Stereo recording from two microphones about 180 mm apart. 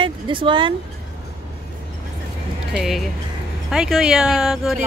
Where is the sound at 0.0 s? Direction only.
30° right (ahead or behind).